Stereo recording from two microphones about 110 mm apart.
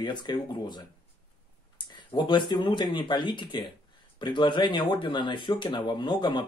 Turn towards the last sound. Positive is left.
turn(degrees=45)  # may be behind; listen again after turning